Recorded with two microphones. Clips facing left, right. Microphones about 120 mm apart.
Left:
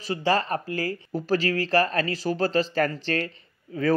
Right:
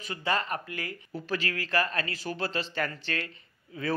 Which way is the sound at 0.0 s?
35° left (ahead or behind).